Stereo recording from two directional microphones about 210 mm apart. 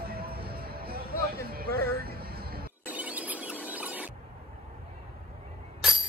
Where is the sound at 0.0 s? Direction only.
45° right (ahead or behind).